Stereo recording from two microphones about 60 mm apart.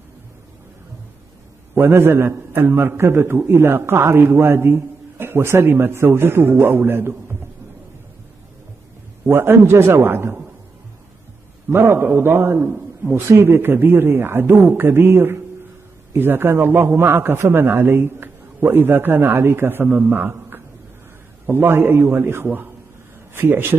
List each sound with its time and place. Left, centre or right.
1.8 s a man's voice: right
9.2 s a man's voice: right
11.7 s a man's voice: right
13.1 s a man's voice: right